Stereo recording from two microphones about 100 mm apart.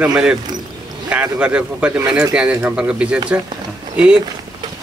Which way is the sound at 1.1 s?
10° right (ahead or behind).